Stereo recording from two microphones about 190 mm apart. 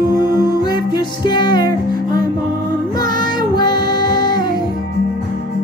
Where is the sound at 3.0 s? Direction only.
20° left (ahead or behind).